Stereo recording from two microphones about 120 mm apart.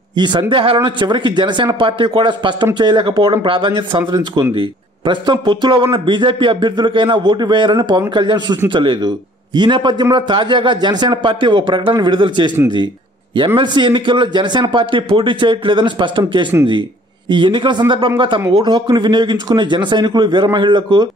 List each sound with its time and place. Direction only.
0.1 s speech: 40° right (ahead or behind)
13.6 s speech: 40° right (ahead or behind)